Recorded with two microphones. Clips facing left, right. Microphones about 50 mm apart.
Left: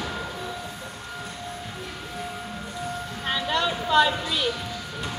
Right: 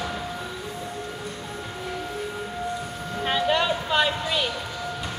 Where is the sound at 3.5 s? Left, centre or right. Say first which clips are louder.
Left 4 dB; centre.